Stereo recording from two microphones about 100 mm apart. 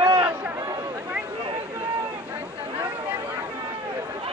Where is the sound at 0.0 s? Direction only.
50° right (ahead or behind).